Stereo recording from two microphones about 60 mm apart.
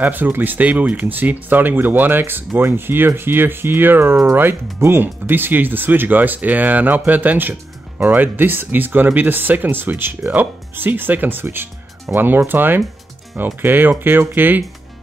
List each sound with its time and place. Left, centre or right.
0.0 s speech: right
11.4 s speech: right